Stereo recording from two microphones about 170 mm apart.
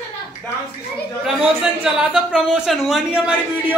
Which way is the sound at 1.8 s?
5° right (ahead or behind).